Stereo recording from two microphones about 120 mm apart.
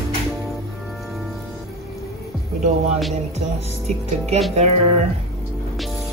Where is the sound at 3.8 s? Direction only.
60° right (ahead or behind).